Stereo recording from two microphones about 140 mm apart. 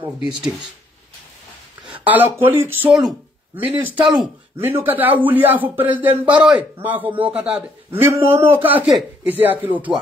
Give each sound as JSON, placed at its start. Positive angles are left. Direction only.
{"t": 0.2, "sound": "speech", "side_deg": -5}
{"t": 2.0, "sound": "a man's voice", "side_deg": -15}
{"t": 2.9, "sound": "speech", "side_deg": 0}
{"t": 3.5, "sound": "a man's voice", "side_deg": -15}